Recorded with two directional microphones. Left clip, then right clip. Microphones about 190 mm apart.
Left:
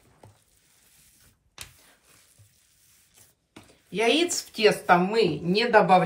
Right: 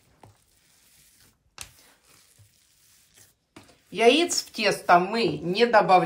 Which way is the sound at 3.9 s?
40° right (ahead or behind).